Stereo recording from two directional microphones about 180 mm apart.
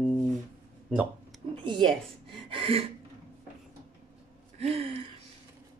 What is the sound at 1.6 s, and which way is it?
Speech, 25° right (ahead or behind).